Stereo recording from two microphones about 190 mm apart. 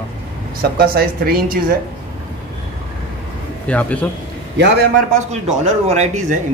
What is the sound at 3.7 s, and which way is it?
Speech, 5° left (ahead or behind).